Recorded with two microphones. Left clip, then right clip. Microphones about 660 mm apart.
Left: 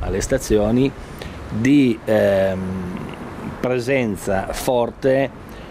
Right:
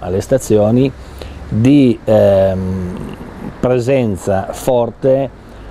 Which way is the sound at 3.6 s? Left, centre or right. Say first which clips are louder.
Right 6 dB; right.